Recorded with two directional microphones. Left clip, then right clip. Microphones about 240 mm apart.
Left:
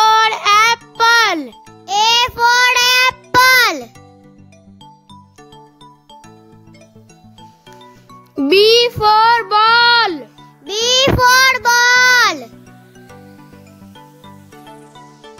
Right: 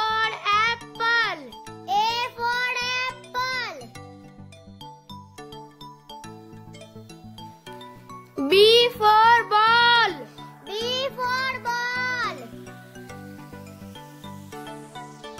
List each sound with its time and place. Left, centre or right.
0.0 s music: left
7.8 s music: centre
8.5 s music: left
10.7 s child singing: left
13.9 s music: centre